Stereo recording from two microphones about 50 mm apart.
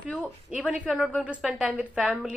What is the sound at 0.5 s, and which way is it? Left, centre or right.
A woman's voice, right.